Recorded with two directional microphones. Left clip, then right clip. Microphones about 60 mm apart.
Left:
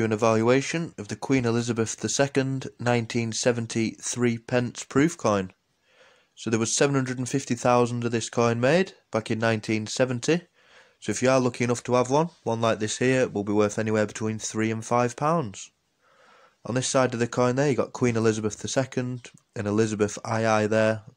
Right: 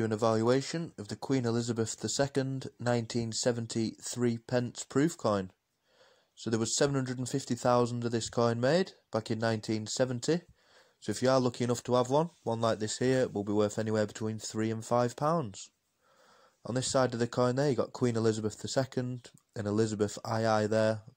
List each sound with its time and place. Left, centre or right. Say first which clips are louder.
0.0 s speech: left 6 dB; right
11.3 s speech: left 6 dB; right
16.6 s speech: left 6 dB; right